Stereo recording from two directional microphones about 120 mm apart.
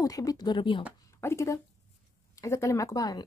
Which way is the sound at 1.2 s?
25° left (ahead or behind).